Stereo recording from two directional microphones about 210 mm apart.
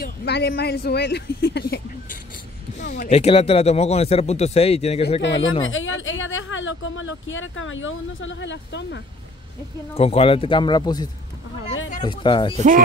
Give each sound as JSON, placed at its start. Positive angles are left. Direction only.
{"t": 0.0, "sound": "speech", "side_deg": 50}
{"t": 3.0, "sound": "speech", "side_deg": 30}
{"t": 5.6, "sound": "speech", "side_deg": 70}
{"t": 9.9, "sound": "speech", "side_deg": 30}
{"t": 12.5, "sound": "speech", "side_deg": -35}